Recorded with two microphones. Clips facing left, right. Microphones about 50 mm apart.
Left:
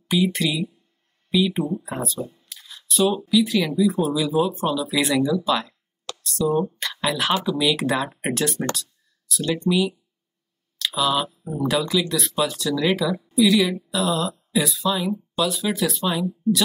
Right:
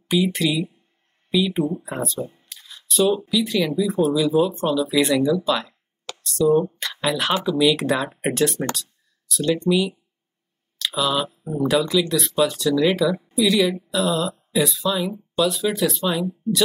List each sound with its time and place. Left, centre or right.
0.1 s speech: centre
2.1 s speech: right
2.5 s a sound: centre
3.3 s speech: centre
5.4 s a sound: centre
7.4 s speech: centre
11.0 s speech: centre
13.1 s a sound: right
13.4 s speech: centre